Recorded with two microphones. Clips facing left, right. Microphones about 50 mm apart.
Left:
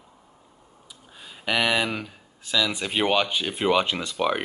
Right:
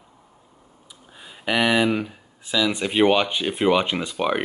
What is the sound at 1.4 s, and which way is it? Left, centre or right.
Speech, centre.